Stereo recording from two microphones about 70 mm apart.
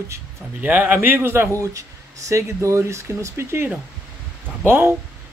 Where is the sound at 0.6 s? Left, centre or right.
Right.